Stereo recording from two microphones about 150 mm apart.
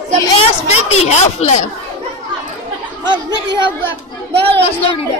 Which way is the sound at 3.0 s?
30° right (ahead or behind).